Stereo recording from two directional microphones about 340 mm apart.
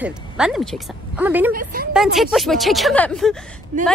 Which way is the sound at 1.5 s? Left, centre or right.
Right.